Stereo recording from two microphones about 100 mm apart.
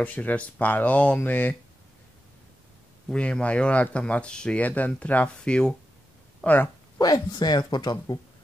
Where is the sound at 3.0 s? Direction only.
10° left (ahead or behind).